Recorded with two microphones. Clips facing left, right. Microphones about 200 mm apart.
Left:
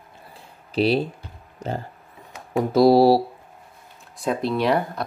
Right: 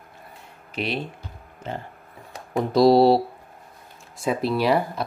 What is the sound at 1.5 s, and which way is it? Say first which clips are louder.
Music: left 4 dB; 40° left (ahead or behind).